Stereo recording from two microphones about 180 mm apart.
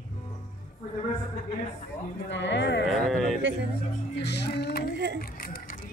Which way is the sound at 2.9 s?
Centre (ahead or behind).